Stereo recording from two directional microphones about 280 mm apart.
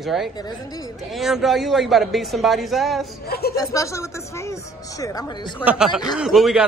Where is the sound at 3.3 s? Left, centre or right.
Left.